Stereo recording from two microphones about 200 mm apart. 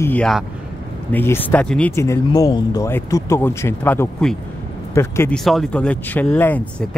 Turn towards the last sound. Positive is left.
turn(degrees=10)  # may be behind; listen again after turning